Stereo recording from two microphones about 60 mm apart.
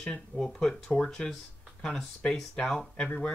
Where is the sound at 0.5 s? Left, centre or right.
Centre.